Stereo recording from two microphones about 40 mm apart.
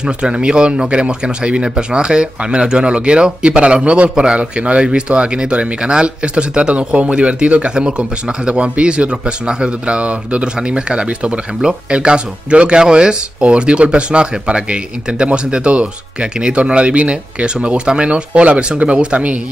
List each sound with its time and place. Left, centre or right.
0.0 s speech: right
4.4 s speech: right